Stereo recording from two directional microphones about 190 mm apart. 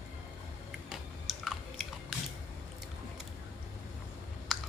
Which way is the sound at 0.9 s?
Centre (ahead or behind).